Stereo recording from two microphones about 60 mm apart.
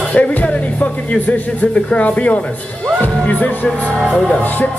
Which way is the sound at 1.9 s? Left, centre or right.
Left.